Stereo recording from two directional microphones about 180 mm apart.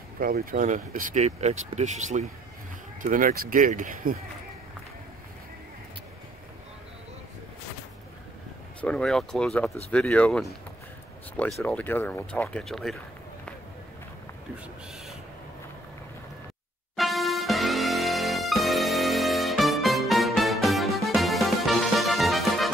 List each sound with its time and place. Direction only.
0.2 s speech: 55° right (ahead or behind)
8.8 s speech: 5° left (ahead or behind)
16.9 s music: centre (ahead or behind)